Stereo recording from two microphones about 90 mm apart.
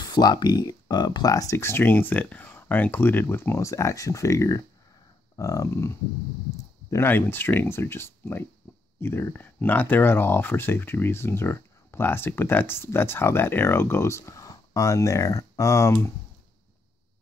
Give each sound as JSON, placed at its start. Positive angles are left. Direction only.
{"t": 0.0, "sound": "speech", "side_deg": 50}
{"t": 1.6, "sound": "speech", "side_deg": 25}